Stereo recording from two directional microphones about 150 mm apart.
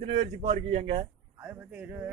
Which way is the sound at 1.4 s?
10° right (ahead or behind).